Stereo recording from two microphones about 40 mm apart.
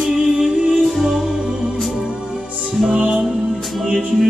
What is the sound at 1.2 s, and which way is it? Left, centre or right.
Music, right.